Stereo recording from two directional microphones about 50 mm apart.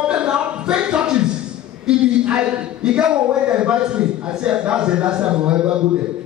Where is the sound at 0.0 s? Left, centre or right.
Centre.